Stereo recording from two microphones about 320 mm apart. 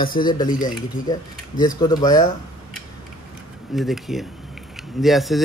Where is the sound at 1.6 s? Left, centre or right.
Centre.